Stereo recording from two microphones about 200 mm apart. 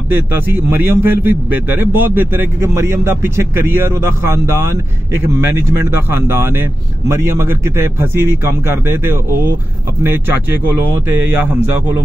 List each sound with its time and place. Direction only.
0.1 s a man's voice: 10° right (ahead or behind)
11.1 s a man's voice: 10° right (ahead or behind)